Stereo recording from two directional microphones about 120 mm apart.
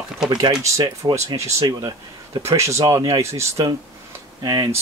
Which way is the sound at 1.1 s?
25° right (ahead or behind).